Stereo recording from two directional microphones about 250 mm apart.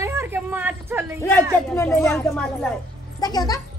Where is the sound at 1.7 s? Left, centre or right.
Centre.